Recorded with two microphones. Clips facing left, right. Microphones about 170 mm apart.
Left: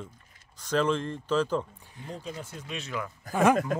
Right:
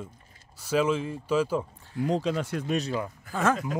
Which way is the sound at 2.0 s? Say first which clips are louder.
Right 12 dB; 90° right.